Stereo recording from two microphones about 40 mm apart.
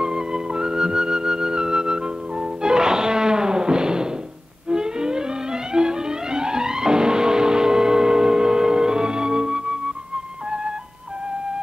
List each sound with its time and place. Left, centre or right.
0.0 s flute: centre
4.6 s music: centre